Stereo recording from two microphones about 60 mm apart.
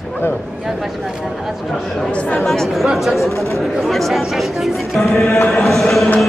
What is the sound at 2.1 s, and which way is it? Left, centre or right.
Speech, centre.